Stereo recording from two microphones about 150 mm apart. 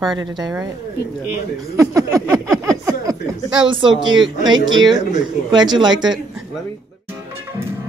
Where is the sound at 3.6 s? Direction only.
35° right (ahead or behind).